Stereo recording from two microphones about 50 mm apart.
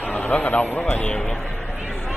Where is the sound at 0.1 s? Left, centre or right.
Left.